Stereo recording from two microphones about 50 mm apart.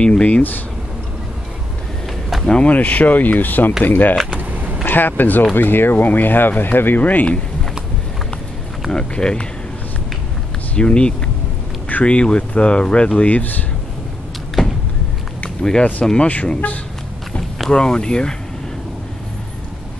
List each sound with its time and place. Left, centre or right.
0.0 s speech: left
2.4 s speech: centre
2.7 s speech: left
4.4 s a sound: right
4.8 s speech: left
8.9 s speech: centre
10.8 s speech: centre; by 13.7 s left
14.6 s a sound: centre
15.6 s speech: centre
17.6 s speech: centre